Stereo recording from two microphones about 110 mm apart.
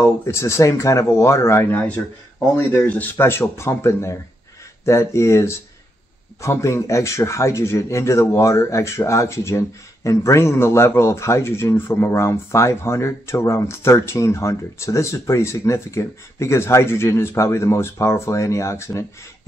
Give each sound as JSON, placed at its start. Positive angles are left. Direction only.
{"t": 0.0, "sound": "a man's voice", "side_deg": 25}